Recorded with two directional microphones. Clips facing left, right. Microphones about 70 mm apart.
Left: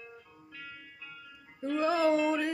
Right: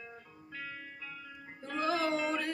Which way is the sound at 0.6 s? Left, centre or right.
Right.